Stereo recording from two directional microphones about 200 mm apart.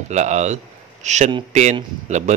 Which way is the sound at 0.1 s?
35° right (ahead or behind).